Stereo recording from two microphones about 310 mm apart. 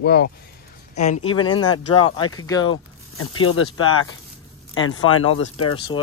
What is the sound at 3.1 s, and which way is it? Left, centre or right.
Speech, left.